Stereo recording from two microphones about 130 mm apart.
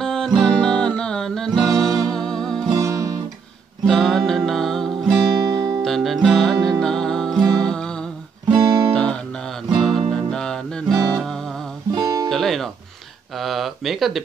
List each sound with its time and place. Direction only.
0.0 s music: 5° left (ahead or behind)
2.7 s music: 25° right (ahead or behind)
3.8 s music: centre (ahead or behind)
11.9 s music: 30° right (ahead or behind)
12.3 s music: centre (ahead or behind)
13.4 s a sound: centre (ahead or behind)